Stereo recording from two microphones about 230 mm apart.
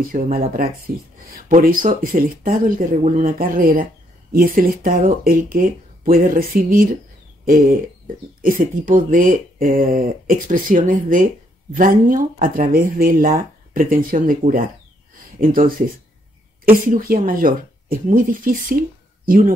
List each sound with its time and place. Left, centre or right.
0.0 s speech: right